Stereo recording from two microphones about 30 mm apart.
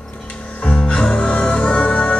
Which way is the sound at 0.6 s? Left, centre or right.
Left.